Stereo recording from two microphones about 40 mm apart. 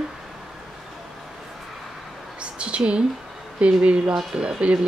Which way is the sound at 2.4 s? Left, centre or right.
Right.